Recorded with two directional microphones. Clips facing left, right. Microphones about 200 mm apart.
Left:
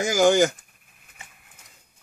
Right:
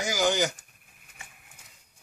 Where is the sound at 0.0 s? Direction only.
50° left (ahead or behind).